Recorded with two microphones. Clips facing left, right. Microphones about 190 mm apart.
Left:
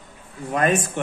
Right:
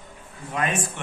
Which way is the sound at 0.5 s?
40° left (ahead or behind).